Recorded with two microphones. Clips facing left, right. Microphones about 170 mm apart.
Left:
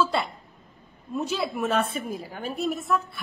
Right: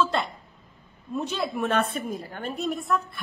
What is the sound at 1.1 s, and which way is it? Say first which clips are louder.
A woman's voice: left 1 dB; centre (ahead or behind).